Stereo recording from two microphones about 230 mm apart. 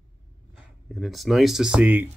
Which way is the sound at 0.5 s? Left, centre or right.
Centre.